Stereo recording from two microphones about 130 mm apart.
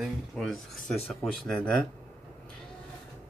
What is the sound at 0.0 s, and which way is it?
Speech, centre (ahead or behind).